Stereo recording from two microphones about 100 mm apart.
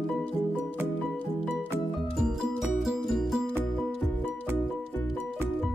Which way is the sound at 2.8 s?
5° right (ahead or behind).